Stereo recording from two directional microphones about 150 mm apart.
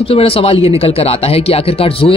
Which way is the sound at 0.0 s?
40° left (ahead or behind).